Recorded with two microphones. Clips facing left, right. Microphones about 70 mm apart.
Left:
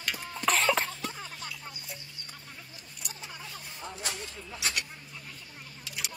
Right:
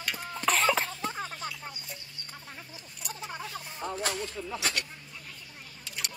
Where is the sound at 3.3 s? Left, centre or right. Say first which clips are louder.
Right 6 dB; right.